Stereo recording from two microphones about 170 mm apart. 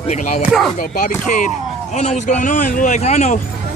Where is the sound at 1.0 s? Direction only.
50° left (ahead or behind).